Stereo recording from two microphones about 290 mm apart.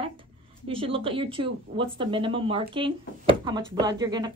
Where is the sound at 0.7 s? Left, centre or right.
Centre.